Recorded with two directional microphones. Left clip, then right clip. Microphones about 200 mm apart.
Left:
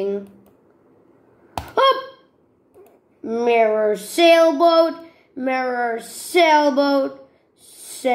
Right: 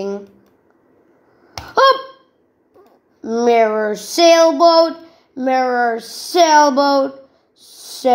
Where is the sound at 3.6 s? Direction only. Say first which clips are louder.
Right 1 dB; 35° right (ahead or behind).